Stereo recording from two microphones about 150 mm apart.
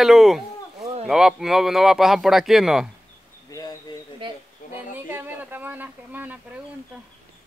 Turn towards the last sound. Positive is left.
turn(degrees=-10)  # may be behind; listen again after turning